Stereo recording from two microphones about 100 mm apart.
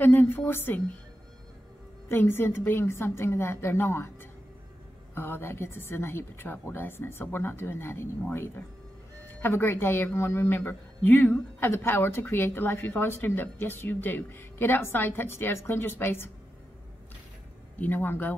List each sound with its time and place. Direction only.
0.0 s a woman's voice: 20° left (ahead or behind)
2.0 s a woman's voice: 25° left (ahead or behind)
17.7 s a woman's voice: 20° left (ahead or behind)